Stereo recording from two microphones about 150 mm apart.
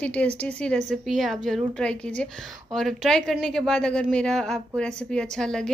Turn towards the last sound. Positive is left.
turn(degrees=5)  # may be behind; listen again after turning